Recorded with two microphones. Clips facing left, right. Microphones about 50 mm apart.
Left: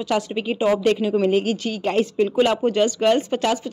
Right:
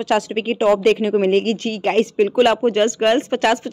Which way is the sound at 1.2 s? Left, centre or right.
Right.